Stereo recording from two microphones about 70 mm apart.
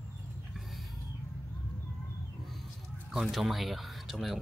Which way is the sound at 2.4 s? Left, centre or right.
Centre.